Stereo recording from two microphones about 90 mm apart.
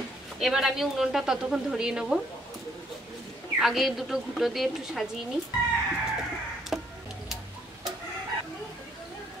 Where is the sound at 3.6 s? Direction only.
Centre (ahead or behind).